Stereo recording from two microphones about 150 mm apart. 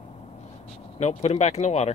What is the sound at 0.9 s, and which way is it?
Speech, 45° left (ahead or behind).